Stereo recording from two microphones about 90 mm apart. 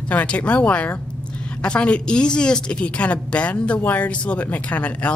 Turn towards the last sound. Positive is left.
turn(degrees=15)  # may be behind; listen again after turning